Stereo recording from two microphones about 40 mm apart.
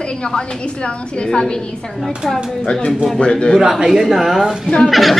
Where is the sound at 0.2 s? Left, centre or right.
Left.